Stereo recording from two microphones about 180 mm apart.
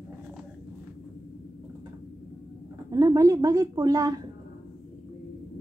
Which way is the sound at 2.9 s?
20° right (ahead or behind).